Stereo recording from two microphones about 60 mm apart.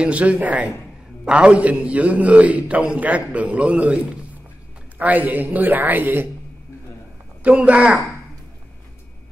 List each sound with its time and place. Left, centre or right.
0.0 s a man's voice: right
7.4 s a man's voice: right